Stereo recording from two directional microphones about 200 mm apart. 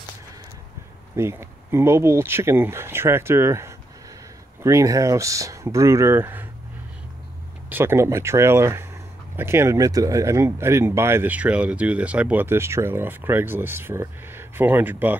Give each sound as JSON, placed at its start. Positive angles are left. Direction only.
{"t": 1.1, "sound": "speech", "side_deg": -15}
{"t": 7.7, "sound": "speech", "side_deg": -10}